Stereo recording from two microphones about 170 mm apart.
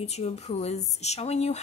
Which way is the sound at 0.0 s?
40° left (ahead or behind).